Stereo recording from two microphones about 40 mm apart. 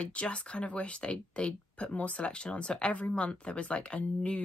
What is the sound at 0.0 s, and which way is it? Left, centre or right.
Speech, left.